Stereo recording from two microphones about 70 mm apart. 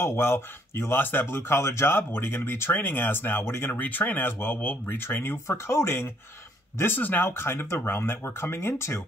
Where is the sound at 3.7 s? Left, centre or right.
Left.